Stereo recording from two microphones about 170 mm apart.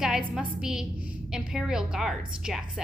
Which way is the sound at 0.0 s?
5° right (ahead or behind).